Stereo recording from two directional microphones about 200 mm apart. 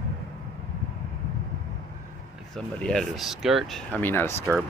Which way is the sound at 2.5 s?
5° left (ahead or behind).